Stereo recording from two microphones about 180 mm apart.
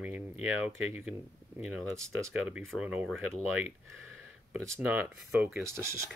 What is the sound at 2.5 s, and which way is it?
Speech, centre (ahead or behind).